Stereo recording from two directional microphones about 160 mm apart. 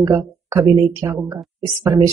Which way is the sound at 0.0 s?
20° right (ahead or behind).